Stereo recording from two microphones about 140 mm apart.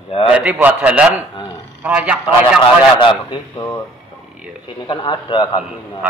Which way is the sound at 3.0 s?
35° left (ahead or behind).